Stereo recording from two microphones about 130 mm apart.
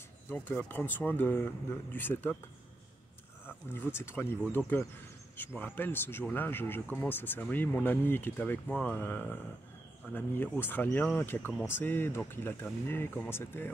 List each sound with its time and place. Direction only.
0.3 s speech: 15° left (ahead or behind)
3.7 s speech: 20° left (ahead or behind)